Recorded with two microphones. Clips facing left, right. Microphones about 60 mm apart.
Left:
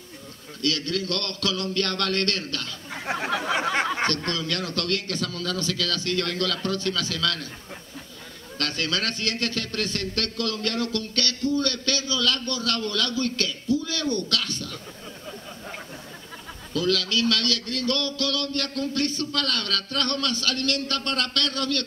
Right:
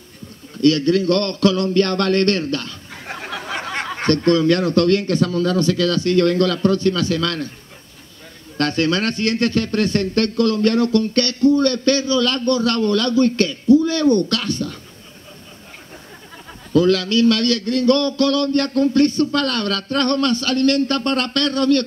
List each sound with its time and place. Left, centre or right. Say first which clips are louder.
0.6 s a man's voice: right 12 dB; right
2.9 s a sound: left 4 dB; centre
4.3 s a man's voice: right 13 dB; right
8.5 s a man's voice: right 9 dB; right
16.7 s a man's voice: right 9 dB; right